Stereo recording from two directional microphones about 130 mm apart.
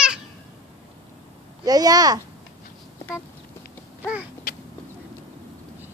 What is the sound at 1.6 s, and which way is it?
Speech, 30° right (ahead or behind).